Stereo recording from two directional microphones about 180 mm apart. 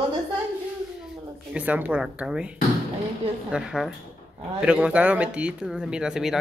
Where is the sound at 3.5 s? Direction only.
5° right (ahead or behind).